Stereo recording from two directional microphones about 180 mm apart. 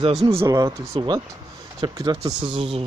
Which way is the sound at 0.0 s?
35° right (ahead or behind).